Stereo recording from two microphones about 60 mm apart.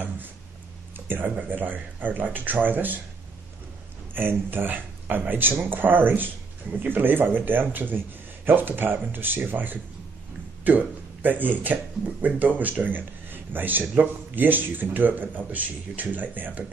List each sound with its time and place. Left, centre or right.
0.9 s speech: right
4.1 s speech: right